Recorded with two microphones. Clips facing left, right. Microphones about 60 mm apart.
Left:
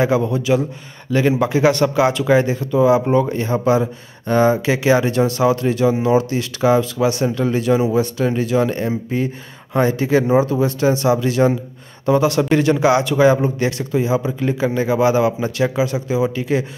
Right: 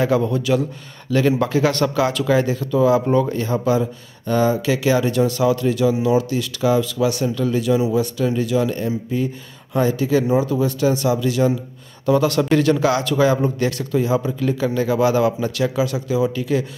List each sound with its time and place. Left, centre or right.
0.0 s speech: centre; by 11.5 s left
12.1 s speech: centre